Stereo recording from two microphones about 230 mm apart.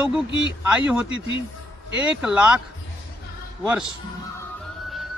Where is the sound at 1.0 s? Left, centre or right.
Right.